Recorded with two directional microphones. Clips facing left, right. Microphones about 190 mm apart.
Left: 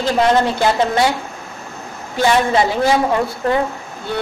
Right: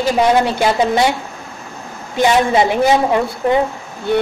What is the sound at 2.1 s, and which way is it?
A woman's voice, 20° right (ahead or behind).